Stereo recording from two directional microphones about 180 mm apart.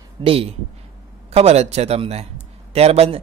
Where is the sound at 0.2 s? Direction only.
30° right (ahead or behind).